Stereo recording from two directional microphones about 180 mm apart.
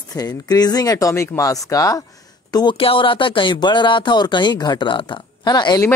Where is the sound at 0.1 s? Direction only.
20° left (ahead or behind).